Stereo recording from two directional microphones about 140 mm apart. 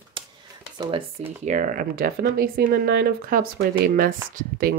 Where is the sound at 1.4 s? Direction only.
65° right (ahead or behind).